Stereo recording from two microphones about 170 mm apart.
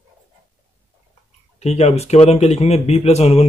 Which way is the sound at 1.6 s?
40° left (ahead or behind).